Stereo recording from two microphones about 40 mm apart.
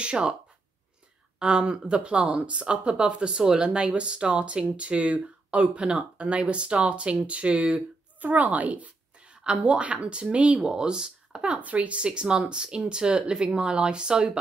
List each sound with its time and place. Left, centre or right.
0.0 s speech: right
1.4 s speech: right
8.2 s speech: right
9.2 s a sound: right
9.6 s speech: right
10.6 s speech: centre
11.4 s speech: right
12.0 s speech: right